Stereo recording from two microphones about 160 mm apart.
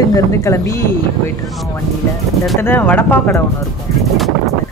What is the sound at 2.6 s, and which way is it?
Speech, 10° left (ahead or behind).